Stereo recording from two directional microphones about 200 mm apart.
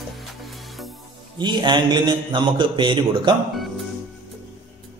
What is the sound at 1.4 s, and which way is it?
A man's voice, 20° right (ahead or behind).